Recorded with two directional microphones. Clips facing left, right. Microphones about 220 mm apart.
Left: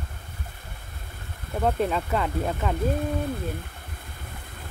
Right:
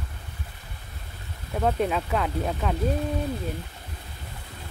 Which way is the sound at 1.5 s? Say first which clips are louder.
Even; centre (ahead or behind).